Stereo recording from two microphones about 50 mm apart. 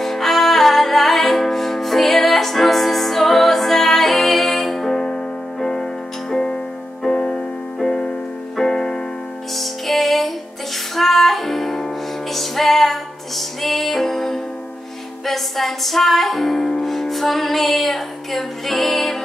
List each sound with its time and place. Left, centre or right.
0.0 s music: centre
9.6 s music: centre